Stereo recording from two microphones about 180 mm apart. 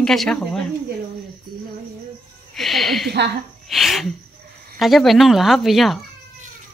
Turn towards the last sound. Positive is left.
turn(degrees=0)  # may be behind; listen again after turning